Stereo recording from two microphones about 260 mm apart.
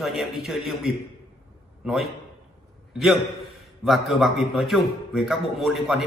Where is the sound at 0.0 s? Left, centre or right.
Centre.